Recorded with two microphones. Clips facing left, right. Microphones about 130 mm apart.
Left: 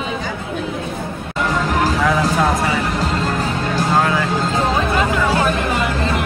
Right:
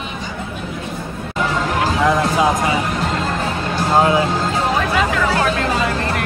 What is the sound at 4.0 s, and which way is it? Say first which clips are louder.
Speech: right 5 dB; 20° right (ahead or behind).